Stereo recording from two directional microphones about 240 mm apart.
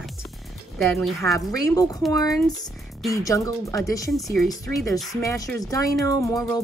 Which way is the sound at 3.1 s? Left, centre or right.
Centre.